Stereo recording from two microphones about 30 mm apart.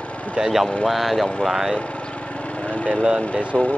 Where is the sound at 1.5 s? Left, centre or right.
Centre.